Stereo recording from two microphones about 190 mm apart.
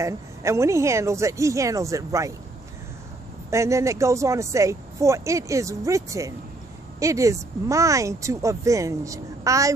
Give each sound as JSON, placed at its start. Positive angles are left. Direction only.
{"t": 0.0, "sound": "speech", "side_deg": -15}
{"t": 3.4, "sound": "speech", "side_deg": -15}